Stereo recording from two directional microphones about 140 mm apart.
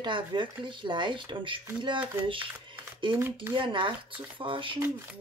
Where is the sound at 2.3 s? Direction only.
35° right (ahead or behind).